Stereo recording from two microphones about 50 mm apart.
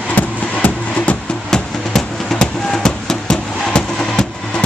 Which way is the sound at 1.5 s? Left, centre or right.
Centre.